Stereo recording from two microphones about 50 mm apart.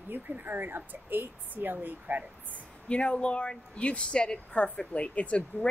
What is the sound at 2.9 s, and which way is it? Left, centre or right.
A woman's voice, left.